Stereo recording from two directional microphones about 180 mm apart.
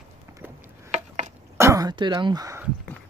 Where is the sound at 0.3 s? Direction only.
15° right (ahead or behind).